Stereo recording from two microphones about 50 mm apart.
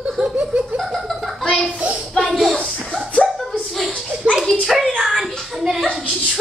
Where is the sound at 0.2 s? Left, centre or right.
Right.